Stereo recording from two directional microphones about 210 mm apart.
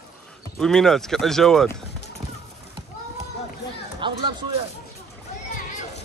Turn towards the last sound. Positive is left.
turn(degrees=-25)  # may be behind; listen again after turning